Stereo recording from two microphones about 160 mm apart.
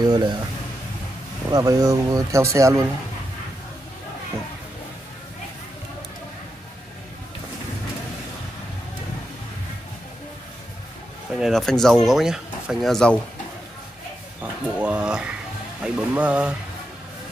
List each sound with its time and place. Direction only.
0.0 s speech: 25° right (ahead or behind)
1.5 s speech: 20° right (ahead or behind)
11.3 s speech: centre (ahead or behind)
14.4 s speech: 10° right (ahead or behind)